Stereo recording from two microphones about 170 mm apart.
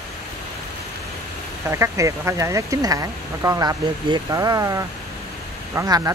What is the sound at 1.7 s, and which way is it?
Speech, 15° right (ahead or behind).